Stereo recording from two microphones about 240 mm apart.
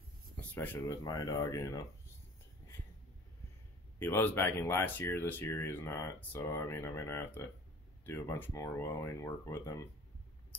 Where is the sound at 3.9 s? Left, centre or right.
Centre.